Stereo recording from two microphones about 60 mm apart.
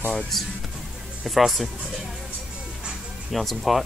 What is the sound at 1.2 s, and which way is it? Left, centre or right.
Speech, centre.